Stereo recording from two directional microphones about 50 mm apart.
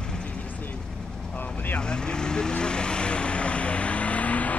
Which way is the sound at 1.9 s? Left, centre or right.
Centre.